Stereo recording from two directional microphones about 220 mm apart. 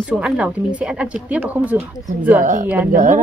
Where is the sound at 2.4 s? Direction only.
35° right (ahead or behind).